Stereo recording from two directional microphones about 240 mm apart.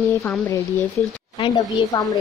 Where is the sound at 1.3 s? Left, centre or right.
Left.